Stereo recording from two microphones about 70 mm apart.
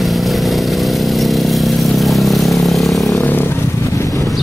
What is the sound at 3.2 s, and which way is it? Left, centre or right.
Vehicle, left.